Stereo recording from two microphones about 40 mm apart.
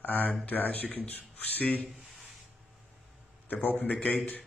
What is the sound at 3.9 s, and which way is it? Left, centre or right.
Speech, left.